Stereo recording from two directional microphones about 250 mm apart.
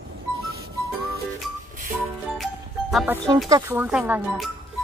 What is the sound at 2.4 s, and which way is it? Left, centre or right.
Music, centre.